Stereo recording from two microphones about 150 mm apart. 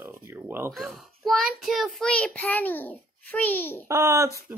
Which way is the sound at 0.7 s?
Centre (ahead or behind).